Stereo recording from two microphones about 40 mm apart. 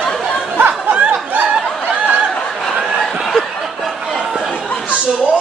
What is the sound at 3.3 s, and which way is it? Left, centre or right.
Snicker, centre.